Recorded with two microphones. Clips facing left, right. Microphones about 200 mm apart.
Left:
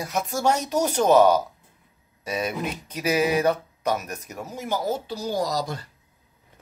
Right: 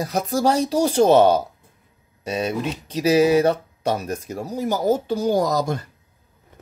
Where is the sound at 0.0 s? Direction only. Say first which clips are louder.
Right 4 dB; 35° right (ahead or behind).